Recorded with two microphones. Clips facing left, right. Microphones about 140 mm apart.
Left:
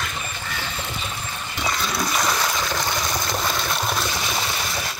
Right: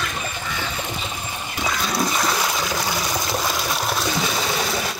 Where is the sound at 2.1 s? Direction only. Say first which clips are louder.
Right 1 dB; 5° right (ahead or behind).